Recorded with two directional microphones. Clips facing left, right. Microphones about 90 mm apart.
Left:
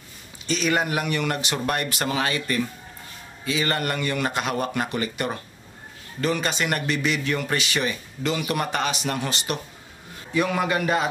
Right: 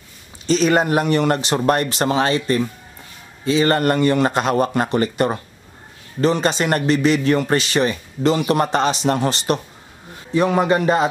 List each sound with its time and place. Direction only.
0.5 s a man's voice: 35° right (ahead or behind)